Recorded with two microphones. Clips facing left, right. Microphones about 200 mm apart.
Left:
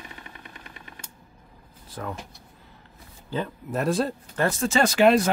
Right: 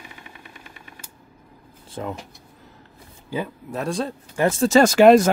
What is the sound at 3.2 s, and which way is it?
Speech, 10° right (ahead or behind).